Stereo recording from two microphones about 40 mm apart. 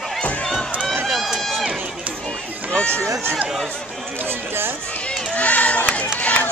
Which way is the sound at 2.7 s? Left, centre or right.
Left.